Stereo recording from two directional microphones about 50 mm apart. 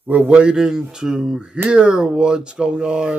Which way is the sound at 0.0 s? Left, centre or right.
Right.